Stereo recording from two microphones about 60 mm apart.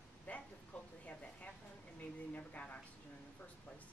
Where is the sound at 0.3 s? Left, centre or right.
Left.